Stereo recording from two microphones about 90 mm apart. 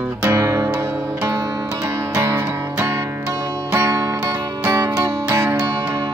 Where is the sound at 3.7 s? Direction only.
35° right (ahead or behind).